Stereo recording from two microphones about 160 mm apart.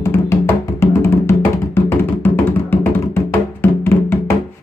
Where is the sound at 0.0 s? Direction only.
15° left (ahead or behind).